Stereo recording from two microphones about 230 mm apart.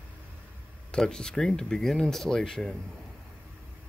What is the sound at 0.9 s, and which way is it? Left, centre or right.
Speech, centre.